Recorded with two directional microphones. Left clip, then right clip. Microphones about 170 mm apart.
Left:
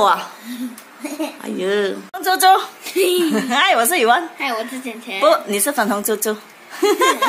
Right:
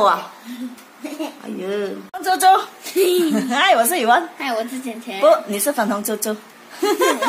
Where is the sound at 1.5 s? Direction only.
35° left (ahead or behind).